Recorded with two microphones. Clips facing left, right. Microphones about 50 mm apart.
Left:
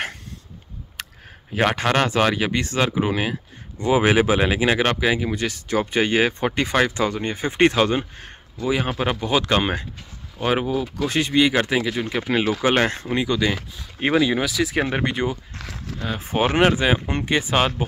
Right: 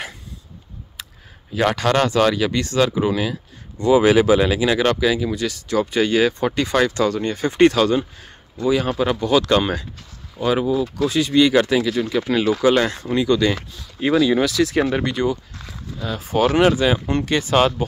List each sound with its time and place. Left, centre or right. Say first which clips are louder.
1.0 s a sound: left 3 dB; left
1.7 s speech: right 4 dB; left
10.4 s speech: right 3 dB; left
11.3 s speech: right 4 dB; left
13.3 s speech: right 4 dB; centre
14.9 s speech: right 3 dB; left
15.6 s speech: left 1 dB; left
16.0 s speech: right 3 dB; left; by 17.8 s centre